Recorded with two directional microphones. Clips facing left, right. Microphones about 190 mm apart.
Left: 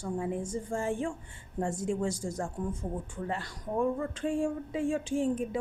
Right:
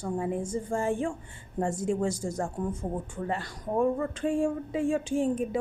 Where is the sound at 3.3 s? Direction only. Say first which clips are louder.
Right 4 dB; 50° right (ahead or behind).